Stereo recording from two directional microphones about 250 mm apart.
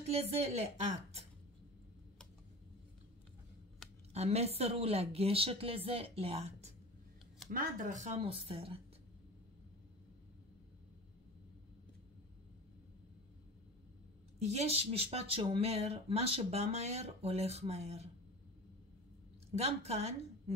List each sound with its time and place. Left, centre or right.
0.1 s speech: right
4.1 s speech: right
14.5 s speech: right
19.5 s a woman's voice: right